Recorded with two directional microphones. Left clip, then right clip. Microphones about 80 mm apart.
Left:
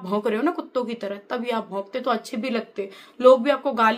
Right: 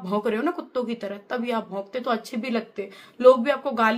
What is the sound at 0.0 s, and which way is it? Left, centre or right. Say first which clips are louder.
Speech: left 1 dB; left.